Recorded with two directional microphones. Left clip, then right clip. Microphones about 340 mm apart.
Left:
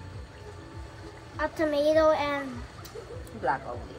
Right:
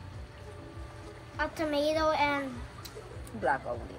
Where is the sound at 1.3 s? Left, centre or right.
Centre.